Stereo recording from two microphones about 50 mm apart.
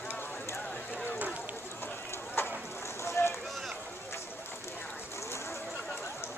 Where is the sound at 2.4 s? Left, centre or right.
Left.